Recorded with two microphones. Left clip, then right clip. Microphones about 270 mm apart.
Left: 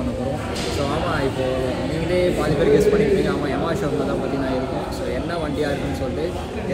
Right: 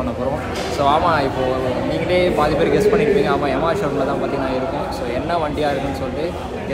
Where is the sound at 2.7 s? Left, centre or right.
Centre.